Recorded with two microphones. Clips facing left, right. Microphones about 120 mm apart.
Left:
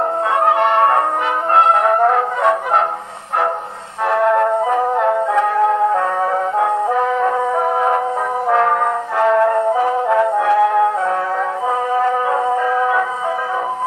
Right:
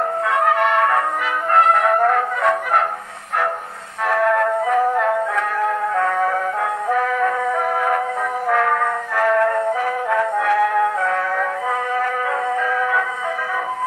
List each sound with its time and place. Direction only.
0.4 s music: 25° left (ahead or behind)
4.1 s music: 25° left (ahead or behind)